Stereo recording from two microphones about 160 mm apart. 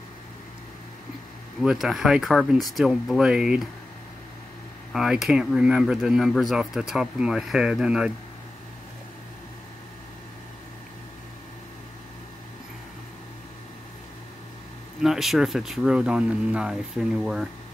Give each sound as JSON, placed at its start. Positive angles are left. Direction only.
{"t": 1.6, "sound": "speech", "side_deg": 0}
{"t": 4.9, "sound": "speech", "side_deg": 0}
{"t": 15.0, "sound": "speech", "side_deg": 0}